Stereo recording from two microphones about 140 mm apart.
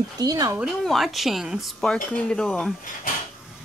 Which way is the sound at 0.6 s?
Centre (ahead or behind).